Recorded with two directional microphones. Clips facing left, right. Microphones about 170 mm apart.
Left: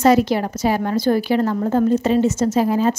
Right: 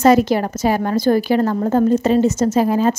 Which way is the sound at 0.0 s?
45° right (ahead or behind).